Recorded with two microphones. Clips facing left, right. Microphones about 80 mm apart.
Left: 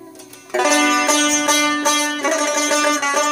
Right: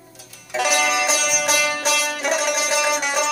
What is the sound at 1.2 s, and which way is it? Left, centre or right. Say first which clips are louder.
Music: left 4 dB; left.